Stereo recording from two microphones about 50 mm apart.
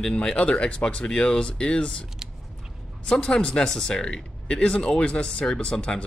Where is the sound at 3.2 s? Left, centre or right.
Centre.